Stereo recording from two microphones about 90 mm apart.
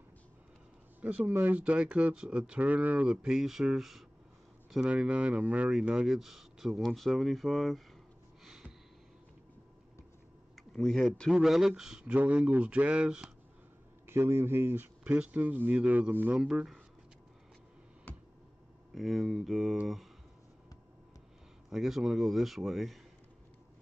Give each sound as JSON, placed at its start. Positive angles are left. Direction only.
{"t": 1.0, "sound": "speech", "side_deg": -15}
{"t": 8.5, "sound": "a sound", "side_deg": -5}
{"t": 10.8, "sound": "speech", "side_deg": 5}
{"t": 14.0, "sound": "a man's voice", "side_deg": -30}
{"t": 16.3, "sound": "speech", "side_deg": -10}
{"t": 18.1, "sound": "a sound", "side_deg": 20}
{"t": 18.9, "sound": "speech", "side_deg": 0}
{"t": 21.6, "sound": "speech", "side_deg": -5}